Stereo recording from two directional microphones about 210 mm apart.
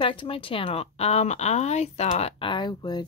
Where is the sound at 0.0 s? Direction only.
25° left (ahead or behind).